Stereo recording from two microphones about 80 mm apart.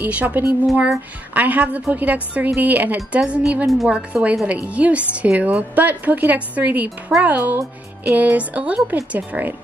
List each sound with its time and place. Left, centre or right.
0.0 s a woman's voice: right
3.6 s a woman's voice: centre
3.9 s a woman's voice: centre